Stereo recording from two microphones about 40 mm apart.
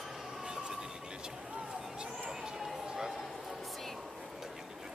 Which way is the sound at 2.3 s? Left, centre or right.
Centre.